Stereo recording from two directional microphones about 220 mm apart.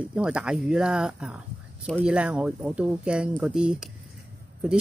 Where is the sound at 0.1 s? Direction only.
5° right (ahead or behind).